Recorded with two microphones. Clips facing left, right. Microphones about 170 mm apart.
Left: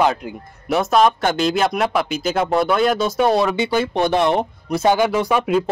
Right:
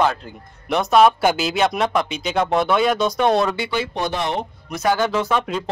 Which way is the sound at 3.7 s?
55° left (ahead or behind).